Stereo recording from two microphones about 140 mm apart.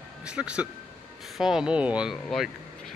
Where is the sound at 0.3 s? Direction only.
5° right (ahead or behind).